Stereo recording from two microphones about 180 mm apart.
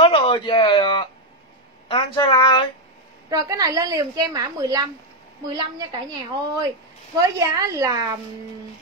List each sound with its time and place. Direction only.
0.0 s a woman's voice: 30° left (ahead or behind)
3.3 s a woman's voice: 20° right (ahead or behind)